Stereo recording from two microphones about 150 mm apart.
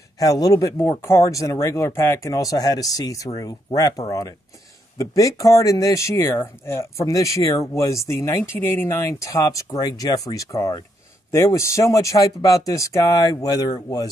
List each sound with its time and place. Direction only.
0.2 s speech: 25° left (ahead or behind)